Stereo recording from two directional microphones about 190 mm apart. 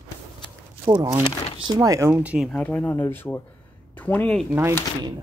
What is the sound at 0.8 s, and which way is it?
Speech, 20° right (ahead or behind).